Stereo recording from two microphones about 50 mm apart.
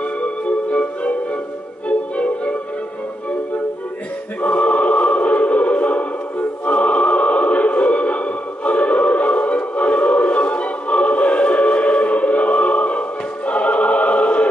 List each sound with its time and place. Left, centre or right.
0.0 s music: left
4.4 s choir: left
13.5 s opera: left